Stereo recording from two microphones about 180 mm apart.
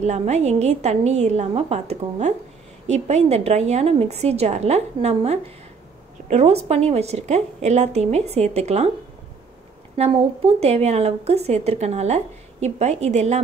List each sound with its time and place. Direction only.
0.0 s a woman's voice: 40° right (ahead or behind)
9.9 s a woman's voice: 35° right (ahead or behind)